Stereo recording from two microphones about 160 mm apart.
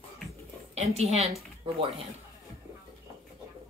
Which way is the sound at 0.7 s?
40° right (ahead or behind).